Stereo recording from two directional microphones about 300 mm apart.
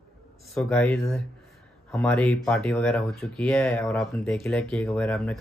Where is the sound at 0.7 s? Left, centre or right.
Centre.